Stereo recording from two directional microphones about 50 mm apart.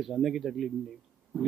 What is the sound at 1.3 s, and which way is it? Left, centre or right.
Speech, right.